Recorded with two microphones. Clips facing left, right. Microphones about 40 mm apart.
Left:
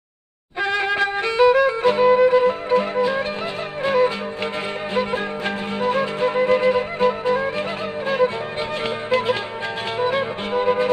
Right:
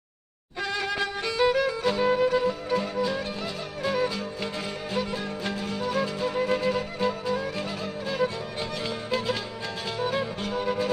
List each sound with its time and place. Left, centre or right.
0.6 s music: left